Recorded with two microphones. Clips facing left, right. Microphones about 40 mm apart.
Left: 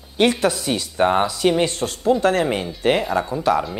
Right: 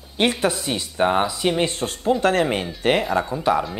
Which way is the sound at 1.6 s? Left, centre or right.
Right.